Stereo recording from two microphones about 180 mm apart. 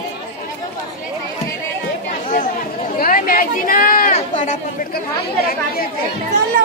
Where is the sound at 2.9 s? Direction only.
50° left (ahead or behind).